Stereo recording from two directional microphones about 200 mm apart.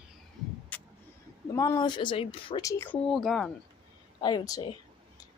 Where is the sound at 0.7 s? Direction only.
5° left (ahead or behind).